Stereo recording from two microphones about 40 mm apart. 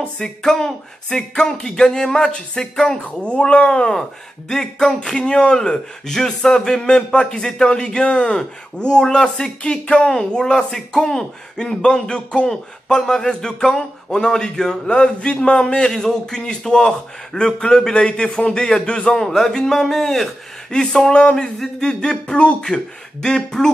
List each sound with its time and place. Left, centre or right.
0.2 s speech: centre
3.2 s speech: left
3.7 s a man's voice: centre
9.6 s a man's voice: left
19.1 s speech: centre
20.7 s a man's voice: centre
21.5 s a man's voice: centre